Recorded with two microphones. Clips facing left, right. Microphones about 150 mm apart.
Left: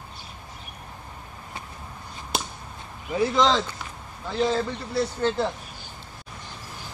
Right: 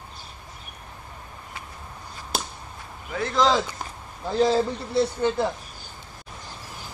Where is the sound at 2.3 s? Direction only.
Centre (ahead or behind).